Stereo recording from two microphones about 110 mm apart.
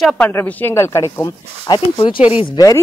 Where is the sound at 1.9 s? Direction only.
50° left (ahead or behind).